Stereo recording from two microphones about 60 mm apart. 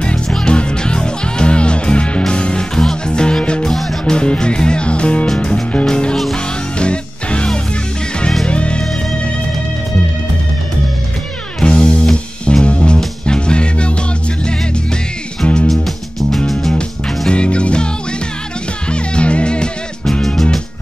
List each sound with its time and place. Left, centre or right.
0.0 s music: centre
8.5 s music: centre
11.6 s music: centre
15.4 s music: centre
15.7 s music: centre
17.3 s music: centre
18.9 s music: centre
20.1 s music: centre